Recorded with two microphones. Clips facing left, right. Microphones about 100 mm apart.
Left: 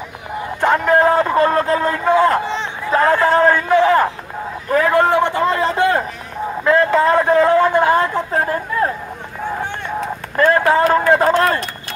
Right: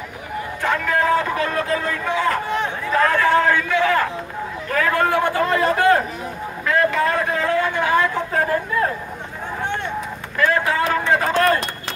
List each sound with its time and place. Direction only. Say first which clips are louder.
0.6 s a man's voice: left 7 dB; 35° left (ahead or behind)
2.4 s a man's voice: even; 25° left (ahead or behind)
6.6 s a sound: left 5 dB; 30° left (ahead or behind)
10.3 s a man's voice: left 6 dB; 40° left (ahead or behind)